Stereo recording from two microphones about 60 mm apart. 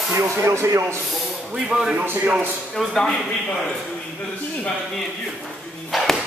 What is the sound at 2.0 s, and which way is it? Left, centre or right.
Speech, right.